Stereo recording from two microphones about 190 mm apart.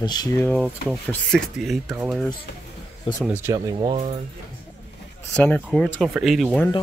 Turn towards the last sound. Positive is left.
turn(degrees=0)  # may be behind; listen again after turning